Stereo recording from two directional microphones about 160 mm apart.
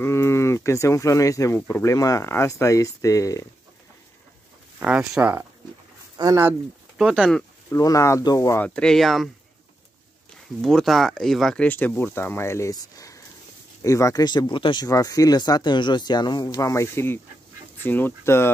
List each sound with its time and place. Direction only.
0.0 s speech: 15° left (ahead or behind)
4.7 s speech: 10° right (ahead or behind)
6.1 s speech: 25° right (ahead or behind)
7.0 s speech: centre (ahead or behind)
7.7 s speech: 20° left (ahead or behind)
8.6 s speech: 5° left (ahead or behind)
10.6 s speech: centre (ahead or behind)